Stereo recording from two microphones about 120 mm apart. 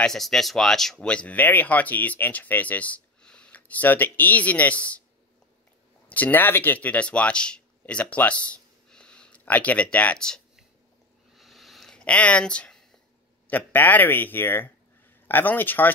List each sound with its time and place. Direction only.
0.0 s speech: 5° left (ahead or behind)
6.0 s speech: 15° left (ahead or behind)
11.3 s a sound: centre (ahead or behind)
13.5 s speech: 15° left (ahead or behind)